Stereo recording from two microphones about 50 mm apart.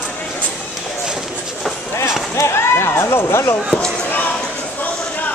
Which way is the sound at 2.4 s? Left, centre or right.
Left.